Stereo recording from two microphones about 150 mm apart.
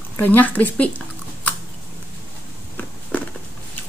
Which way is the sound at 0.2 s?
10° left (ahead or behind).